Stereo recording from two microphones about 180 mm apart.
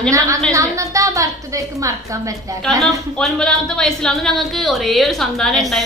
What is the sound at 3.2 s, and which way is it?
Speech, 5° left (ahead or behind).